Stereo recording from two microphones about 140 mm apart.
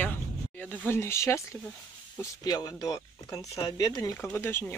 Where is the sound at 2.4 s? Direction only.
30° left (ahead or behind).